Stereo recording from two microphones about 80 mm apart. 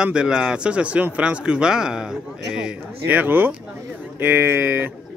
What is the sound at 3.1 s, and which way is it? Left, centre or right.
Speech, right.